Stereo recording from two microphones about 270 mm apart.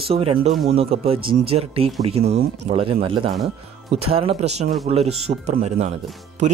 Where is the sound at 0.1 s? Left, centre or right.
Right.